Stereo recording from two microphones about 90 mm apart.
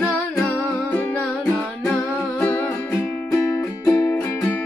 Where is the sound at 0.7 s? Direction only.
20° left (ahead or behind).